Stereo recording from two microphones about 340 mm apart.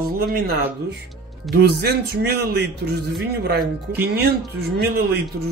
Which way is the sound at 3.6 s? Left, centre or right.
Centre.